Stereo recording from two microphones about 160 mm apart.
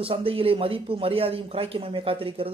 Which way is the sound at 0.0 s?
35° right (ahead or behind).